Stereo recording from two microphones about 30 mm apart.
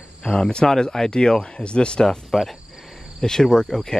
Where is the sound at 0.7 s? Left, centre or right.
Left.